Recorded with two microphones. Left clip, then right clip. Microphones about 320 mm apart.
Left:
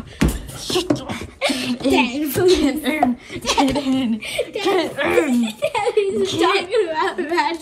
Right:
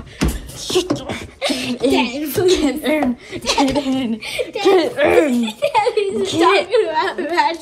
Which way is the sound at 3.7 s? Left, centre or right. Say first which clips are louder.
Right 1 dB; centre.